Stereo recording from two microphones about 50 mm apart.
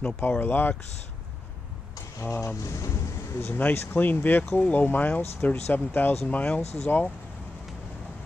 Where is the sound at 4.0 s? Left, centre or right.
Left.